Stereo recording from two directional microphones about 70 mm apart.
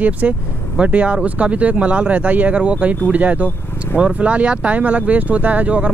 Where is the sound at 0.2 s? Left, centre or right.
Centre.